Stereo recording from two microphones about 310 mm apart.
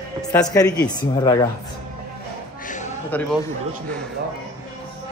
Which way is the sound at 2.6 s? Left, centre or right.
Left.